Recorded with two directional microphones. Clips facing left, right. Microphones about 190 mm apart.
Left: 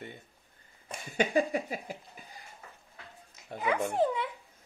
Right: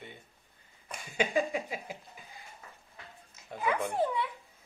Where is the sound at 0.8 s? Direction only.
35° left (ahead or behind).